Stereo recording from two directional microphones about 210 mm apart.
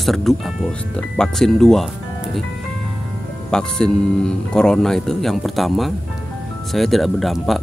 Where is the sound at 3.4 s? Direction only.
5° left (ahead or behind).